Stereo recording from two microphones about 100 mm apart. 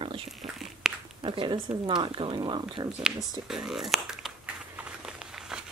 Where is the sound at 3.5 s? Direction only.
5° right (ahead or behind).